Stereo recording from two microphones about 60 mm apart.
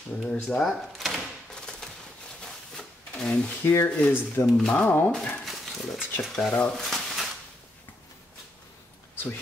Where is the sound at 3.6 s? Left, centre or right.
Left.